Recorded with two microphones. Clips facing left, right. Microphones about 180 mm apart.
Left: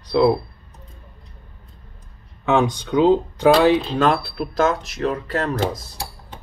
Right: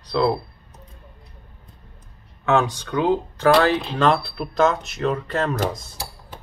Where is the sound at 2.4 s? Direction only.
15° left (ahead or behind).